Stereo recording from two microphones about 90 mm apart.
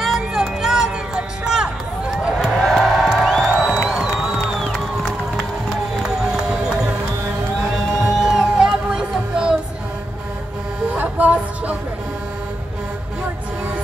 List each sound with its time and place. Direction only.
0.0 s music: 5° right (ahead or behind)
2.4 s music: 5° left (ahead or behind)
8.0 s music: centre (ahead or behind)
11.0 s a sound: 15° right (ahead or behind)